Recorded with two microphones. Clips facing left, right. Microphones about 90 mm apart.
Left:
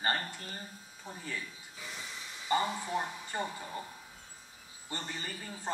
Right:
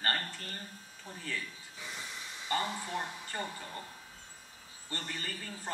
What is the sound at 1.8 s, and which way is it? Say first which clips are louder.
Hiss: right 1 dB; centre (ahead or behind).